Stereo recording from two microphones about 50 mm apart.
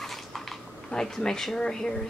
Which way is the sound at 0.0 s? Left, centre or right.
Centre.